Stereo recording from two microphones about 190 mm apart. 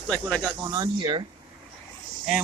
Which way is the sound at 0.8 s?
25° right (ahead or behind).